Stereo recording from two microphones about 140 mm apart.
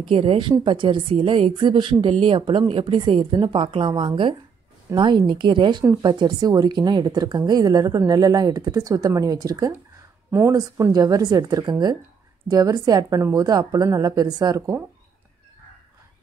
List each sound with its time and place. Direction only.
0.0 s a woman's voice: 40° right (ahead or behind)